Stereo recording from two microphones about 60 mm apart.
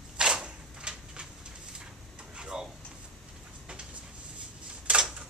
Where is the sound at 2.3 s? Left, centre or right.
Centre.